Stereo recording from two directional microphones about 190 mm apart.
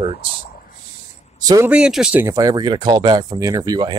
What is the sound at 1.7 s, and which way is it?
Speech, 5° right (ahead or behind).